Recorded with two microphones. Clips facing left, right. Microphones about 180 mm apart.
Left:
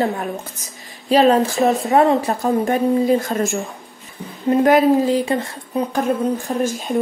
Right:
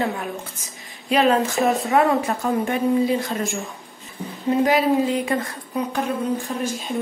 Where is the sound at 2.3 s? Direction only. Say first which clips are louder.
Left 4 dB; 40° left (ahead or behind).